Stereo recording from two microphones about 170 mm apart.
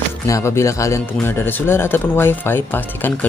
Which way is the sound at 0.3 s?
15° left (ahead or behind).